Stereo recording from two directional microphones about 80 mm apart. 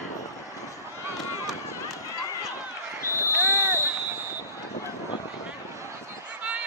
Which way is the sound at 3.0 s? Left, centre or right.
Left.